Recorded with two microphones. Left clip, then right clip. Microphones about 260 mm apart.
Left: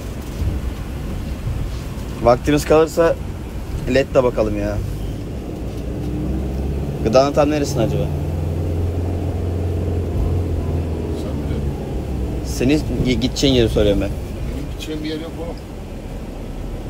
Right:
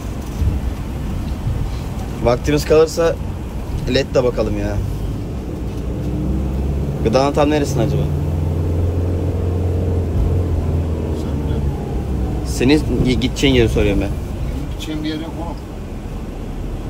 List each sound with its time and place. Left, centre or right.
2.2 s speech: centre
7.0 s a man's voice: centre
12.5 s speech: centre